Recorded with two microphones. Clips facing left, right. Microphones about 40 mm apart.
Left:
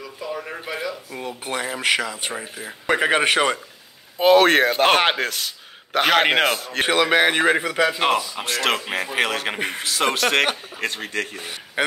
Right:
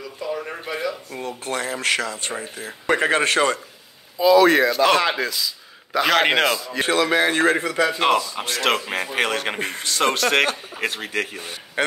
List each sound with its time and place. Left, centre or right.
0.2 s speech: centre
1.2 s a man's voice: centre
4.2 s speech: left
6.8 s speech: left
7.3 s speech: centre